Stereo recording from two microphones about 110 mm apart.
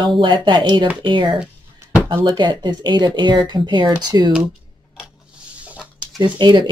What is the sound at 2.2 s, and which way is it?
Speech, 45° right (ahead or behind).